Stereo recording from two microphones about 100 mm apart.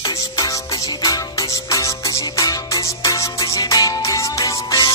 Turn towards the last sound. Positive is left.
turn(degrees=40)  # may be behind; listen again after turning